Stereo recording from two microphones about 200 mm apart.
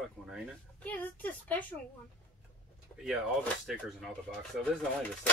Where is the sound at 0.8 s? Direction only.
10° left (ahead or behind).